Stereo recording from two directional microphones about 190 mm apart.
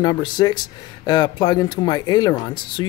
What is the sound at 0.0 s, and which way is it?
Speech, 20° left (ahead or behind).